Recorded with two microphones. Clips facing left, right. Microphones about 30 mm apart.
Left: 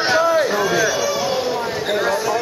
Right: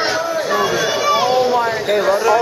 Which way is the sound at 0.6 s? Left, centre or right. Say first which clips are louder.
Right 1 dB; right.